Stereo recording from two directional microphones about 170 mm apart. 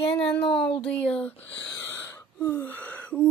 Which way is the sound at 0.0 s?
30° left (ahead or behind).